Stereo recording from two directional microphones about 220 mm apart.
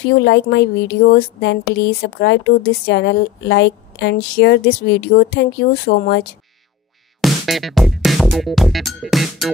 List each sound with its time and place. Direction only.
0.2 s speech: 50° left (ahead or behind)
7.2 s music: centre (ahead or behind)